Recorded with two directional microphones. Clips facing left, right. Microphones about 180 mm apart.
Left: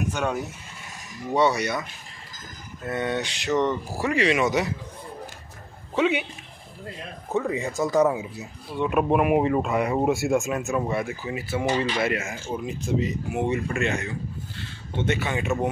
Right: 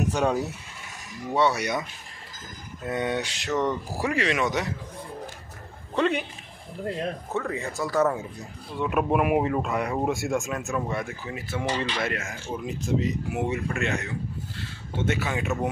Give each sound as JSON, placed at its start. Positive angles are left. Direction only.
{"t": 0.1, "sound": "speech", "side_deg": -35}
{"t": 1.3, "sound": "speech", "side_deg": -5}
{"t": 2.8, "sound": "speech", "side_deg": -15}
{"t": 5.9, "sound": "speech", "side_deg": 5}
{"t": 7.3, "sound": "speech", "side_deg": 15}